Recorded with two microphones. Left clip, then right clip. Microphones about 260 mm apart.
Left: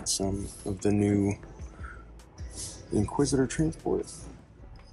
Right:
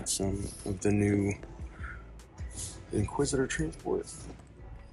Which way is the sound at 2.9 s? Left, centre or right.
Left.